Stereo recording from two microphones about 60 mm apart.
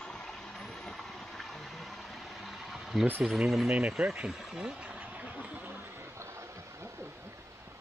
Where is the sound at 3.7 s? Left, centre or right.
Centre; by 7.7 s right.